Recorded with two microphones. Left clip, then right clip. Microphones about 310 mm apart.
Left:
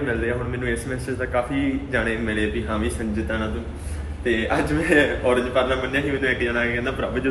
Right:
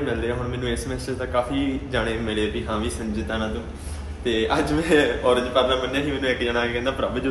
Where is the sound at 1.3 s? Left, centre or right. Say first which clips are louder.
Even; centre.